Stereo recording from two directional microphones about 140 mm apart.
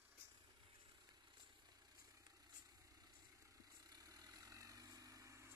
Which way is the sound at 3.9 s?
25° right (ahead or behind).